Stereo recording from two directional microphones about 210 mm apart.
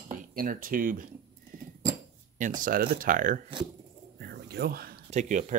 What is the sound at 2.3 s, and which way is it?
Speech, 40° right (ahead or behind).